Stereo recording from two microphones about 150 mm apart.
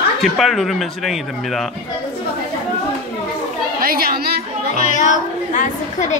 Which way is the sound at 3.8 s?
80° right.